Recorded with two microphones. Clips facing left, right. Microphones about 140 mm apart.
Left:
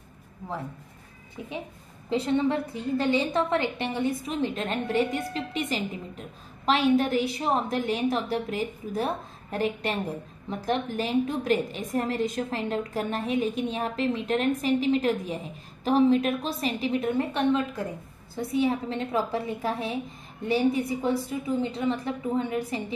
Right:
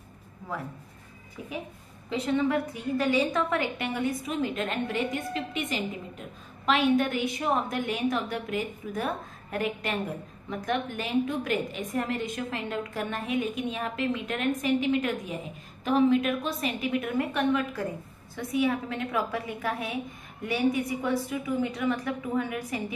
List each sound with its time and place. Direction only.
2.0 s a woman's voice: 30° left (ahead or behind)